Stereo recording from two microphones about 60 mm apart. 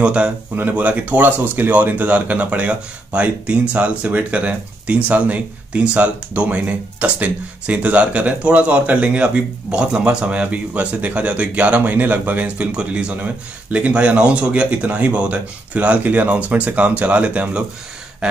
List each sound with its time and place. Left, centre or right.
0.0 s speech: centre
0.6 s speech: right